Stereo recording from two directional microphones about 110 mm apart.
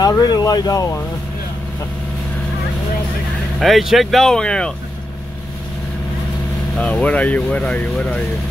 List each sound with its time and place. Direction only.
0.2 s speech: 35° left (ahead or behind)
3.5 s speech: centre (ahead or behind)
6.8 s speech: 10° left (ahead or behind)